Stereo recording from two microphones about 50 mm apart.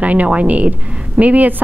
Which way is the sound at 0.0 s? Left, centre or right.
Right.